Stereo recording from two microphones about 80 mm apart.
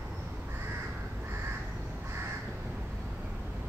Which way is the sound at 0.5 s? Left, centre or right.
Right.